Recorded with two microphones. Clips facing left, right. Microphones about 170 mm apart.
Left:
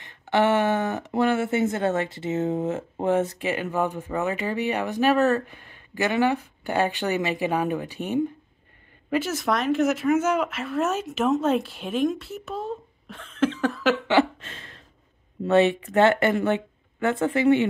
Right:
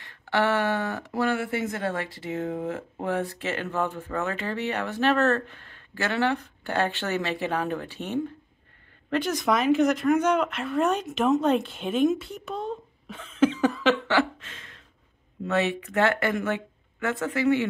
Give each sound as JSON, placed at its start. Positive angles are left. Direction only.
{"t": 0.0, "sound": "speech", "side_deg": 20}
{"t": 14.4, "sound": "a sound", "side_deg": 35}
{"t": 15.4, "sound": "speech", "side_deg": 30}